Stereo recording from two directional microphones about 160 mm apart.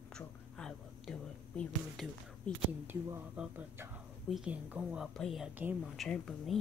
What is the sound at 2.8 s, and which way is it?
A woman's voice, 15° right (ahead or behind).